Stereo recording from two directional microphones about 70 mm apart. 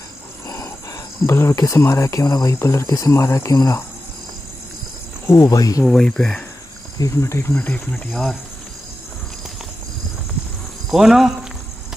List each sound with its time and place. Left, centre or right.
0.5 s a sound: left
1.8 s speech: left
2.2 s speech: left
2.5 s speech: left
5.4 s speech: left
5.9 s speech: centre
7.0 s speech: left
7.5 s speech: centre
8.1 s speech: centre
10.9 s speech: centre